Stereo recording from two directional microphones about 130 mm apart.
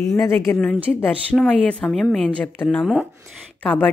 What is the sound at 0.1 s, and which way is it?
A woman's voice, 20° left (ahead or behind).